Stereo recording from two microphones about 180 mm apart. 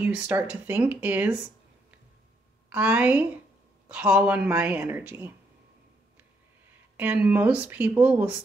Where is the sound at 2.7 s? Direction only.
10° right (ahead or behind).